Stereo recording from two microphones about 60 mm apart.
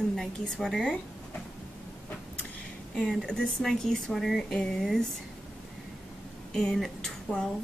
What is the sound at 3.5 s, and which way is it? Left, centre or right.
Speech, centre.